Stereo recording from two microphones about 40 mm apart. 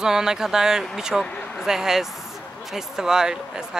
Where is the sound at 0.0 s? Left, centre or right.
Centre.